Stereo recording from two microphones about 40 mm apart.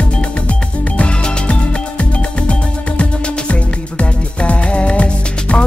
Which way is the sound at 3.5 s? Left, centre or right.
Left.